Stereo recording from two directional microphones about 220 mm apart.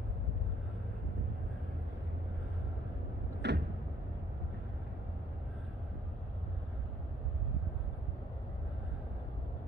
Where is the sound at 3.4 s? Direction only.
50° right (ahead or behind).